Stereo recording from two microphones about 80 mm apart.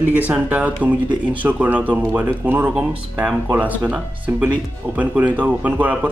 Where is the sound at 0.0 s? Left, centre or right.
Right.